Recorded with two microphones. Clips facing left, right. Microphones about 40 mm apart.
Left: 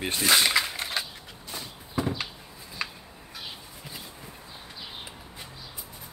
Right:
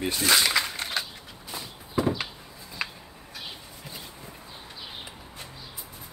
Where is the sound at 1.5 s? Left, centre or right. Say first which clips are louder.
Right 3 dB; centre.